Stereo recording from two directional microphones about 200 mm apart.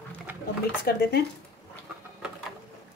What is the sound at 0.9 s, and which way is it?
Speech, 50° left (ahead or behind).